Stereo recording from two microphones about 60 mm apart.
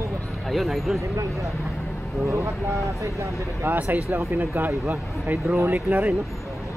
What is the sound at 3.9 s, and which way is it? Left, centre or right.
Speech, right.